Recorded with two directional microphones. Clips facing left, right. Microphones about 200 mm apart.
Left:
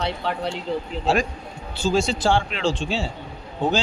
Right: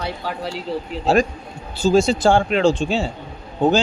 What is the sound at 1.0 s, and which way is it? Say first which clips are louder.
Speech: right 7 dB; 40° right (ahead or behind).